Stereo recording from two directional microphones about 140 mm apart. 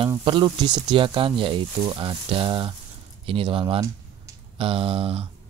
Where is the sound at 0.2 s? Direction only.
35° right (ahead or behind).